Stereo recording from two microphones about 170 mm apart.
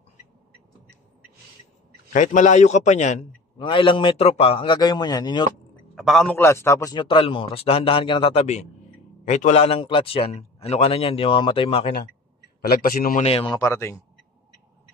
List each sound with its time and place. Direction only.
2.1 s a man's voice: 45° left (ahead or behind)
3.5 s a man's voice: 30° left (ahead or behind)
5.9 s a man's voice: centre (ahead or behind)
6.3 s a man's voice: 15° left (ahead or behind); by 11.8 s 30° left (ahead or behind)
12.6 s a man's voice: 60° left (ahead or behind)
13.2 s a man's voice: 35° left (ahead or behind)
13.6 s speech: 15° left (ahead or behind)